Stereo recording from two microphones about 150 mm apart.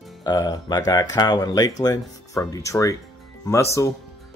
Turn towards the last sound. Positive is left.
turn(degrees=20)  # may be behind; listen again after turning